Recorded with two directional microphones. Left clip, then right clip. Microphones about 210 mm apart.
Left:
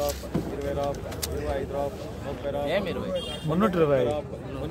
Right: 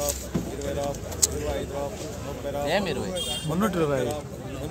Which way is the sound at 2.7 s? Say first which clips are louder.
Right 3 dB; 50° right (ahead or behind).